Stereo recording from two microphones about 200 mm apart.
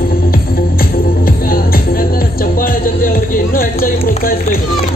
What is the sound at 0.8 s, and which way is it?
Music, 45° left (ahead or behind).